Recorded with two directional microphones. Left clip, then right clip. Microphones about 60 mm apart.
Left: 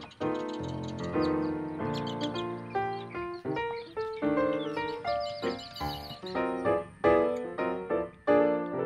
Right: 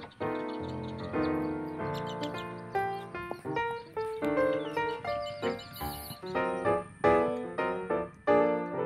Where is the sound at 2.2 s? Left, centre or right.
Centre.